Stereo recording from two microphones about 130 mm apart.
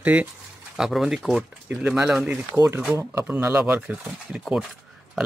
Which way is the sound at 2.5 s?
20° right (ahead or behind).